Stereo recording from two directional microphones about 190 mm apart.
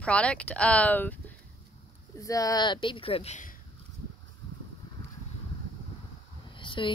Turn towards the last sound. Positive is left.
turn(degrees=25)  # may be behind; listen again after turning